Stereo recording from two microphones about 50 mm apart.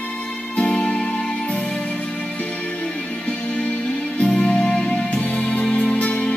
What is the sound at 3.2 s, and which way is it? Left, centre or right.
Music, left.